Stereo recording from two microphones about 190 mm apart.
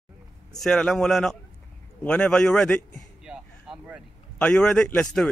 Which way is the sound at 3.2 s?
5° right (ahead or behind).